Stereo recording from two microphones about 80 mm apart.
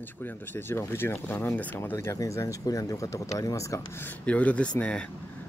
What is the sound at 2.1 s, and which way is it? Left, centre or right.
Speech, left.